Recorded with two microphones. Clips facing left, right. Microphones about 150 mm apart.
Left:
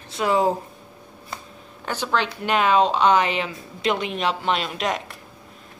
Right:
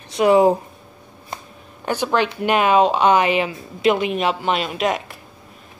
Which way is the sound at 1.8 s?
15° right (ahead or behind).